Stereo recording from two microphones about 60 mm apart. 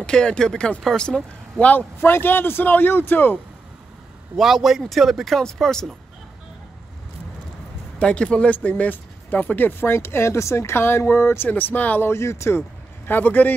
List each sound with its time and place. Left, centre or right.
0.0 s speech: centre
2.0 s speech: left
4.4 s speech: centre
8.0 s speech: centre; by 11.4 s left
11.4 s speech: left
12.0 s speech: left
12.5 s speech: left